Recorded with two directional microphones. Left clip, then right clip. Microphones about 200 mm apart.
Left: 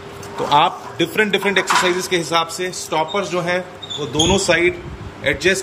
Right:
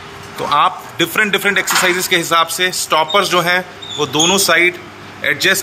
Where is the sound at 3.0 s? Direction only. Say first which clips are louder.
Right 6 dB; 35° right (ahead or behind).